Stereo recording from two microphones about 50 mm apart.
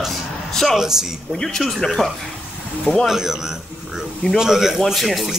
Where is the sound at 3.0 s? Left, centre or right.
Centre.